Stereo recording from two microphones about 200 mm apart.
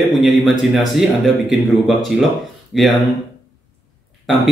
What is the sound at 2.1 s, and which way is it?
Mantra, 5° right (ahead or behind).